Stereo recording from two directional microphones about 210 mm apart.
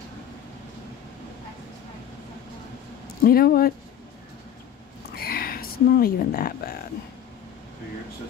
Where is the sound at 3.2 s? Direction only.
45° left (ahead or behind).